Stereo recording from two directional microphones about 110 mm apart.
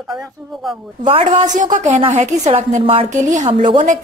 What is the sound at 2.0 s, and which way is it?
A woman's voice, 90° right.